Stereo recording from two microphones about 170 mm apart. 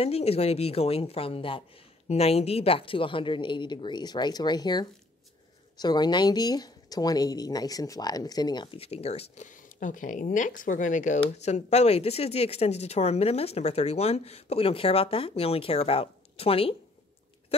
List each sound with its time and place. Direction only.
0.0 s speech: 35° left (ahead or behind)